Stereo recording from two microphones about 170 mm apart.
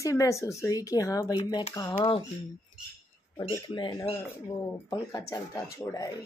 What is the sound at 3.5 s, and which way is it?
Speech, 25° left (ahead or behind).